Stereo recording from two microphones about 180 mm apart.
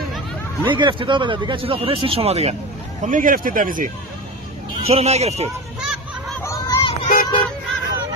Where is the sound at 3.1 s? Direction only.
50° right (ahead or behind).